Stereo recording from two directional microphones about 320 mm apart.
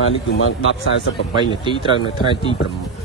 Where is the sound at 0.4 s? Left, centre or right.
Left.